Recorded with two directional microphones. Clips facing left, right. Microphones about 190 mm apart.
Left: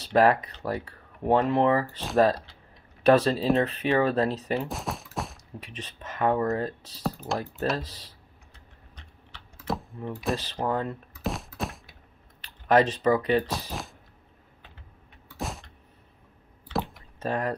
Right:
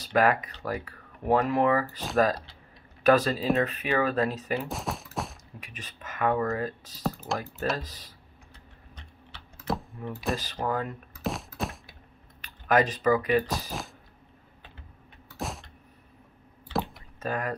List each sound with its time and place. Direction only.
0.1 s speech: 30° left (ahead or behind)
2.0 s speech: centre (ahead or behind)
3.1 s speech: 30° left (ahead or behind)
4.6 s gunshot: centre (ahead or behind)
5.9 s speech: 30° left (ahead or behind)
7.2 s speech: centre (ahead or behind)
9.7 s a sound: centre (ahead or behind)
10.3 s speech: 30° left (ahead or behind)
11.2 s thunk: centre (ahead or behind)
12.4 s computer keyboard: 30° left (ahead or behind)
13.0 s speech: 30° left (ahead or behind)
13.5 s speech: centre (ahead or behind)
15.3 s power windows: centre (ahead or behind)
17.2 s speech: 30° left (ahead or behind)